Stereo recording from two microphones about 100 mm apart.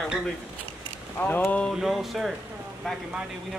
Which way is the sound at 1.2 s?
15° left (ahead or behind).